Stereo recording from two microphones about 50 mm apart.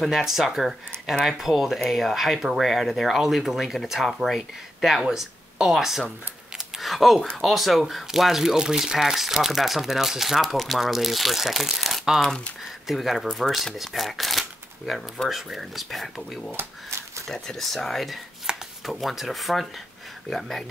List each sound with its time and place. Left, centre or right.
0.0 s speech: centre
18.5 s chopping: centre
18.9 s speech: centre